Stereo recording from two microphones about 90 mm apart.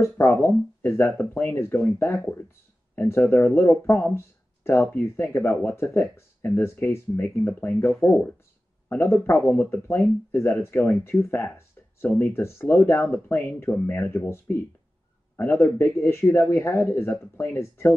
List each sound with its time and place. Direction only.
0.0 s speech: 25° left (ahead or behind)